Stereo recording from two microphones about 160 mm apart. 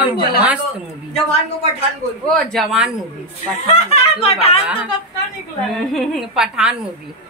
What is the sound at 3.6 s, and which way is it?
Speech, 40° left (ahead or behind).